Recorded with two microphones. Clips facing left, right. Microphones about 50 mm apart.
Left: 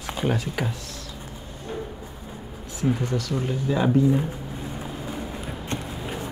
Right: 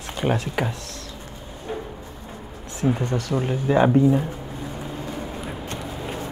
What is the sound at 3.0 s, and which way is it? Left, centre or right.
Speech, right.